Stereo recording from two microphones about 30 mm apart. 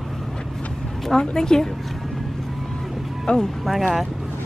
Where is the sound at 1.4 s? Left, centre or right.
Centre.